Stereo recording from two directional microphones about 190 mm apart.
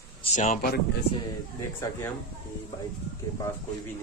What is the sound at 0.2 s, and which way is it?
Speech, 40° left (ahead or behind).